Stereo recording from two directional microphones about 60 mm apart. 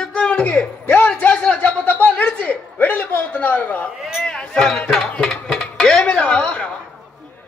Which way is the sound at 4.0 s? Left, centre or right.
Centre.